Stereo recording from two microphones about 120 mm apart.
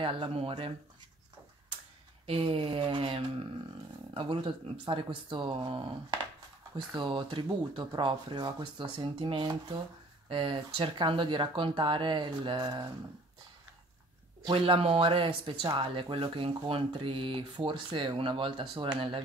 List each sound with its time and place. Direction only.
0.0 s speech: 45° right (ahead or behind)
2.2 s speech: 50° right (ahead or behind)
14.4 s speech: 45° right (ahead or behind)